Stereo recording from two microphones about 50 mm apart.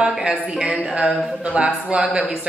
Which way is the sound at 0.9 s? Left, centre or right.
Right.